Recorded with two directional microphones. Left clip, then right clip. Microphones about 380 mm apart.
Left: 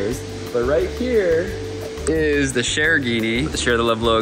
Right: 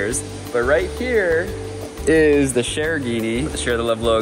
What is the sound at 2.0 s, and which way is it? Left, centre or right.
Speech, centre.